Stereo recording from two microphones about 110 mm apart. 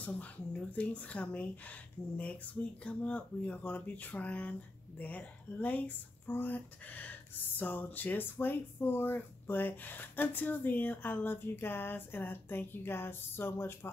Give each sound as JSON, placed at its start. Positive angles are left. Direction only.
{"t": 0.0, "sound": "speech", "side_deg": 15}